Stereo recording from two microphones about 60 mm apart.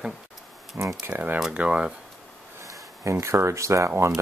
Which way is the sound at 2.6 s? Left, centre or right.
Right.